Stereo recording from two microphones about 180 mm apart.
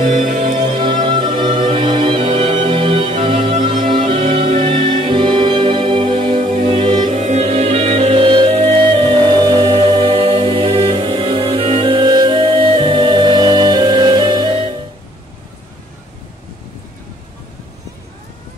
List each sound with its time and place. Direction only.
0.0 s music: 45° right (ahead or behind)
0.6 s music: 25° right (ahead or behind)
7.2 s music: 40° right (ahead or behind)